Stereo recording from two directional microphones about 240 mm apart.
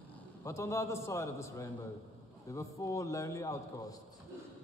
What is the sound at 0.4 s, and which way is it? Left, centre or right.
A man's voice, centre.